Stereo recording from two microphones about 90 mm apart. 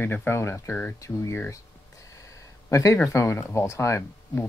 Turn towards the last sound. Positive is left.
turn(degrees=30)  # may be behind; listen again after turning